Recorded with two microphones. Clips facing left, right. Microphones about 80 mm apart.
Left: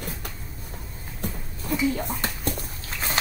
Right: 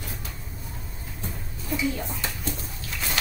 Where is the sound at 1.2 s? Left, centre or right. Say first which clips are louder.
Left 4 dB; left.